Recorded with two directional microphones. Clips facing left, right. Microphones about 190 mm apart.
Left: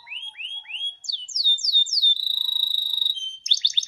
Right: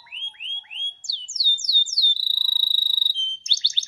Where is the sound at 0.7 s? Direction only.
20° left (ahead or behind).